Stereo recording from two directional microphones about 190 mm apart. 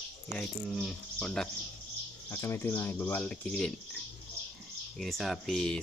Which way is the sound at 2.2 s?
15° left (ahead or behind).